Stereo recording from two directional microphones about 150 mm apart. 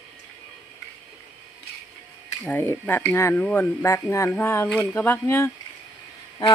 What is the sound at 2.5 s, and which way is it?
Speech, 15° left (ahead or behind).